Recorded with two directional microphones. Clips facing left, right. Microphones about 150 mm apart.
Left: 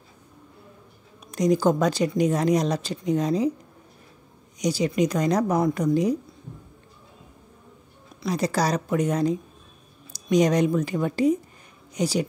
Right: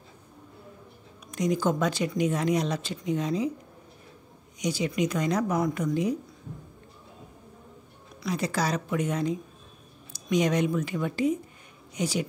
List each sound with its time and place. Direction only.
1.3 s speech: 35° left (ahead or behind)
4.6 s speech: 40° left (ahead or behind)
8.3 s speech: 40° left (ahead or behind)